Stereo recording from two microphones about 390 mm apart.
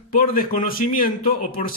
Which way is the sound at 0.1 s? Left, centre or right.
Left.